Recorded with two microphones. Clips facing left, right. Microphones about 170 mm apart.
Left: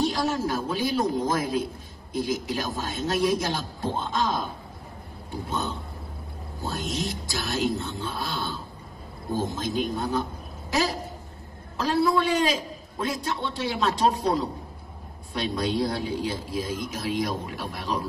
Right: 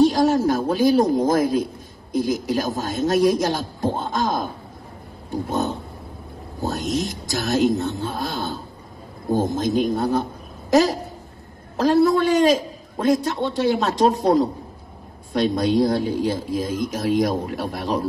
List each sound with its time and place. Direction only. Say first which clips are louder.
0.0 s a man's voice: right 9 dB; 45° right (ahead or behind)
5.5 s a man's voice: right 6 dB; 45° right (ahead or behind)